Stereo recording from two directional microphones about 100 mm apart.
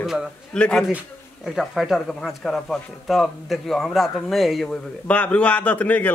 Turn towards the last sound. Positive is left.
turn(degrees=15)  # may be behind; listen again after turning